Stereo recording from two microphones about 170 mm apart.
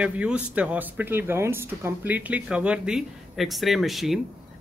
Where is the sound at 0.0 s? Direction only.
5° right (ahead or behind).